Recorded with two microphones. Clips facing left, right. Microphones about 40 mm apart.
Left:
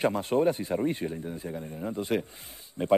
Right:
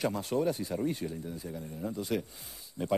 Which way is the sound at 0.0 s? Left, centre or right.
Left.